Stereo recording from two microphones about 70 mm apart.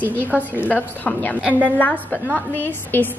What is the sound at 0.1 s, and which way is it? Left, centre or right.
A woman's voice, left.